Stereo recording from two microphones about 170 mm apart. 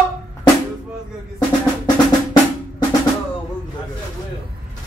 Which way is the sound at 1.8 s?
25° left (ahead or behind).